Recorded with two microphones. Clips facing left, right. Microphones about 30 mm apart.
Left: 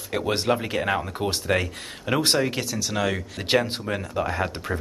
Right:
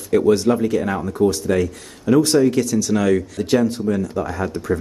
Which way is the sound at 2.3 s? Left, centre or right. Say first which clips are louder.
Right 9 dB; left.